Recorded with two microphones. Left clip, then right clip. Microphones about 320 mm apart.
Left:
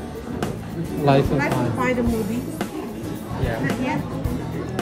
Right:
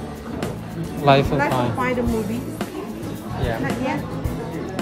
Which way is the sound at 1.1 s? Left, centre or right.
Centre.